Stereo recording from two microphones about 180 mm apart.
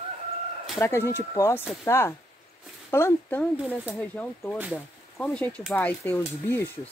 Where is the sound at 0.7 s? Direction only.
15° left (ahead or behind).